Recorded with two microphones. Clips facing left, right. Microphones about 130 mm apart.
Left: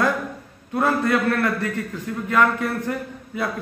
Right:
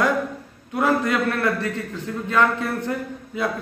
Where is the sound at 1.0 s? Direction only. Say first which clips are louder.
Left 1 dB; 20° right (ahead or behind).